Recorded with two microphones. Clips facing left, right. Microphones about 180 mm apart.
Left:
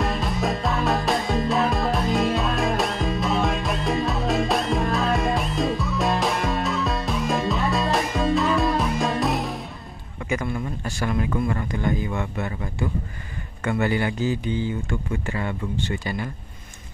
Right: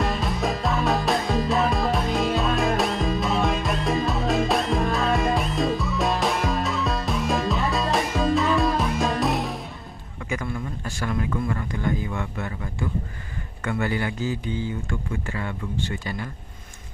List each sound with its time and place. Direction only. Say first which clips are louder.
0.0 s music: even; centre (ahead or behind)
10.3 s a sound: left 3 dB; 20° left (ahead or behind)
11.1 s speech: left 2 dB; 20° left (ahead or behind)
13.7 s speech: left 3 dB; 20° left (ahead or behind)